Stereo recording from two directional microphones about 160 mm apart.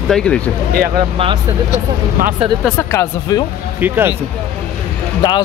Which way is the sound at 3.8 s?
10° right (ahead or behind).